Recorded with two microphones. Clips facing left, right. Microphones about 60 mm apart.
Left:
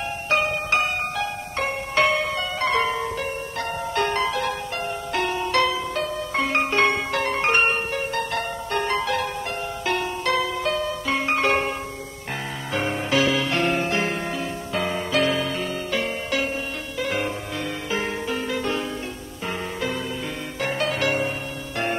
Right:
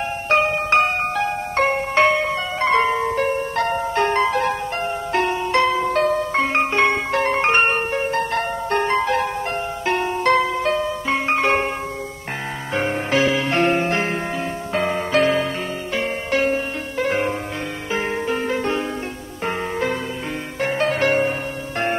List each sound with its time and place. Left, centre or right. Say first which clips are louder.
0.3 s music: right 5 dB; right
2.0 s music: right 2 dB; right
3.2 s music: right 8 dB; right
3.9 s music: right 3 dB; right
6.3 s music: right 3 dB; right
12.9 s music: right 2 dB; right
16.3 s music: right 9 dB; right
19.4 s music: right 5 dB; right
20.6 s music: right 5 dB; right